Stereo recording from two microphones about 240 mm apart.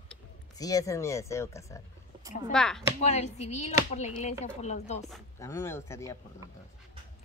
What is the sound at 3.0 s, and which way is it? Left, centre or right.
Female singing, left.